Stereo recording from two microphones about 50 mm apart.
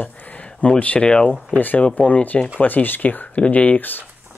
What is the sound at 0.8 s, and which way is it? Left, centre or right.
Speech, left.